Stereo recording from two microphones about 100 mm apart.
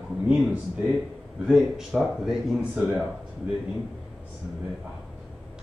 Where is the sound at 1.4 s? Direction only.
5° right (ahead or behind).